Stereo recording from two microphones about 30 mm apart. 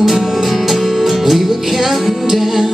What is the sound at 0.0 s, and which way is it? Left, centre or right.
Music, centre.